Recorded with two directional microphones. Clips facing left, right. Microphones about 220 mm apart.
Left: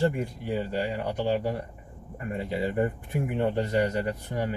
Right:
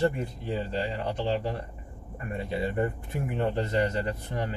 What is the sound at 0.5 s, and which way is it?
Speech, 10° left (ahead or behind).